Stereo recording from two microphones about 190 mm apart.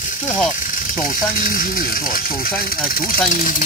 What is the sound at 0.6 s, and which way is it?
Speech, 45° left (ahead or behind).